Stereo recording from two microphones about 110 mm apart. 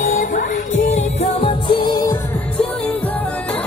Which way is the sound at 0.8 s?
90° left.